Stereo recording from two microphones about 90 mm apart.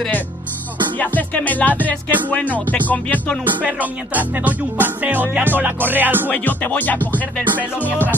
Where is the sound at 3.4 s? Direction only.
15° right (ahead or behind).